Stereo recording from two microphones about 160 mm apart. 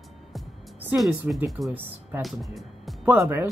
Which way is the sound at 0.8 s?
10° right (ahead or behind).